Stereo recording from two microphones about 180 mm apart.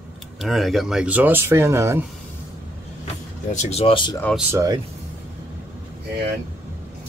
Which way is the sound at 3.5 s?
35° left (ahead or behind).